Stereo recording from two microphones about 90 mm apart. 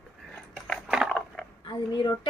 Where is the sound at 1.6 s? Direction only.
70° left (ahead or behind).